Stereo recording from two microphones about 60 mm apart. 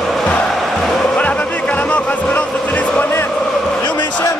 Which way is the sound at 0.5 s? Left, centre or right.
Centre.